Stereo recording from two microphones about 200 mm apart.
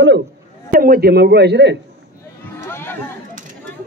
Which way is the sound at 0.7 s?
45° right (ahead or behind).